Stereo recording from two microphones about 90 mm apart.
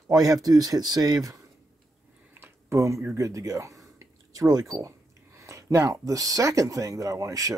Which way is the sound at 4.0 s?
40° right (ahead or behind).